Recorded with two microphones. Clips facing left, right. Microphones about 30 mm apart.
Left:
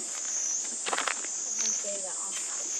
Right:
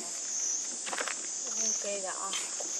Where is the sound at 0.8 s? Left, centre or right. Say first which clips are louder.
Left 6 dB; left.